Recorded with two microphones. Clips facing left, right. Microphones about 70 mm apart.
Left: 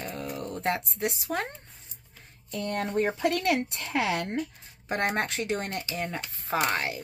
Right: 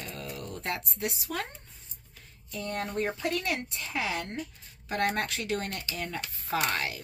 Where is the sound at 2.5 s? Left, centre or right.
Left.